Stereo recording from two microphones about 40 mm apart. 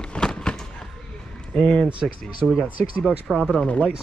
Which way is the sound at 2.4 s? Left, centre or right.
Centre.